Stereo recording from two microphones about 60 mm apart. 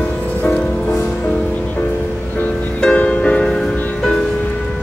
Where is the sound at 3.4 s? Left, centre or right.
Centre.